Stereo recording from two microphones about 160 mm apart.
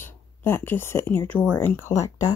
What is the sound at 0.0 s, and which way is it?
Speech, 15° left (ahead or behind).